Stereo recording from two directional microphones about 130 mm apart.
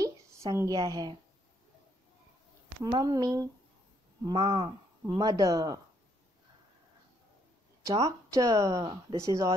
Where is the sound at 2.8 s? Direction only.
30° right (ahead or behind).